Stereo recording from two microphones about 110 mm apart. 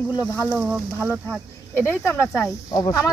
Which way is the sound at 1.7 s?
20° left (ahead or behind).